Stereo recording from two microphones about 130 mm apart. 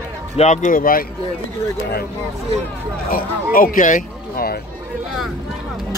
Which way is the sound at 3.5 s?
90° left.